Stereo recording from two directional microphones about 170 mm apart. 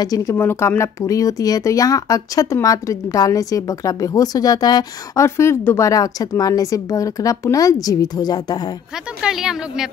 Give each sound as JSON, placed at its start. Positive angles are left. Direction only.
{"t": 0.0, "sound": "speech", "side_deg": 20}
{"t": 9.2, "sound": "speech", "side_deg": -5}